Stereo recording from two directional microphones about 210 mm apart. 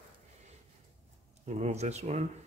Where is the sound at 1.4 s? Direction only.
30° right (ahead or behind).